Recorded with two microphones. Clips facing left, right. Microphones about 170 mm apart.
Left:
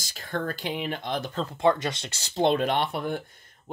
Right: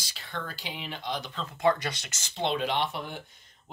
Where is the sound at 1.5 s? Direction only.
25° left (ahead or behind).